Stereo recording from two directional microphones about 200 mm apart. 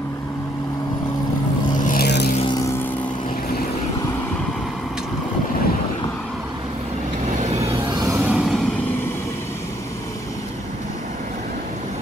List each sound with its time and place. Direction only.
1.9 s vehicle: 50° left (ahead or behind)
2.3 s vehicle: 20° left (ahead or behind)
8.1 s a sound: centre (ahead or behind)